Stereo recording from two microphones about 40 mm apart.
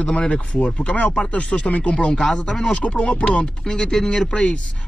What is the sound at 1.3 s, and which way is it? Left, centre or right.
Speech, left.